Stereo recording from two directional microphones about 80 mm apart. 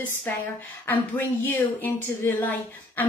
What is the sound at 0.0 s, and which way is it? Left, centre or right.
A woman's voice, left.